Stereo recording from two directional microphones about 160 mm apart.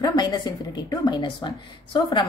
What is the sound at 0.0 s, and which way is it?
A woman's voice, 25° left (ahead or behind).